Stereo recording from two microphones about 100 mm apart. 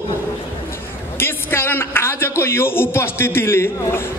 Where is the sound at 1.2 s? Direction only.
25° left (ahead or behind).